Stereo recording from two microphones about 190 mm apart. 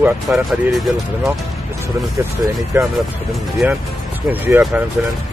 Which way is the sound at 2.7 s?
15° right (ahead or behind).